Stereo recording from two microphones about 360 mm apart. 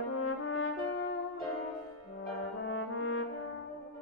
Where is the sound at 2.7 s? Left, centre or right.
Left.